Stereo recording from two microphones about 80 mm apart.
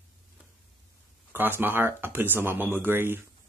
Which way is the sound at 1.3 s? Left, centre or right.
Right.